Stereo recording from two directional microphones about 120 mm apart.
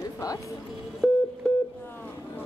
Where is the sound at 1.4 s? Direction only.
5° left (ahead or behind).